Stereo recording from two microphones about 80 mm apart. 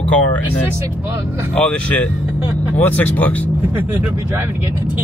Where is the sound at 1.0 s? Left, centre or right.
Right.